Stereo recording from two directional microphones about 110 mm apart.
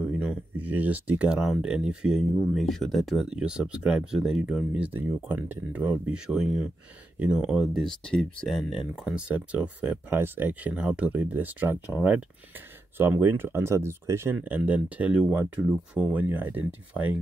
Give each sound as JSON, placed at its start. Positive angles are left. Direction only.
{"t": 0.0, "sound": "speech", "side_deg": -10}
{"t": 8.1, "sound": "speech", "side_deg": 10}
{"t": 12.9, "sound": "speech", "side_deg": -20}